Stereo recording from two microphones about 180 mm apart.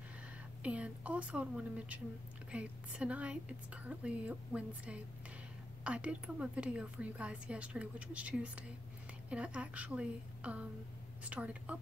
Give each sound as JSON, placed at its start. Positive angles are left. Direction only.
{"t": 0.6, "sound": "a woman's voice", "side_deg": -5}